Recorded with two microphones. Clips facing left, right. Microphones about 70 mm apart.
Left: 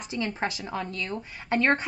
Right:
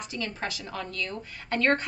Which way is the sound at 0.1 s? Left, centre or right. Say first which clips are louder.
Left 6 dB; left.